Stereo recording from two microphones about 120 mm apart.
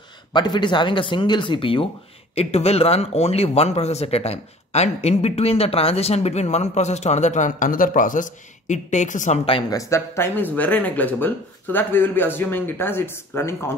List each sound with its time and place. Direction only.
0.3 s speech: 40° left (ahead or behind)
2.3 s speech: 60° left (ahead or behind); by 9.4 s 90° left
9.7 s speech: 25° left (ahead or behind)